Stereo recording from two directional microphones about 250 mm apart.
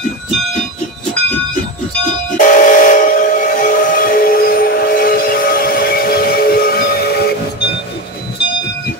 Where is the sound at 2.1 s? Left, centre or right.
Left.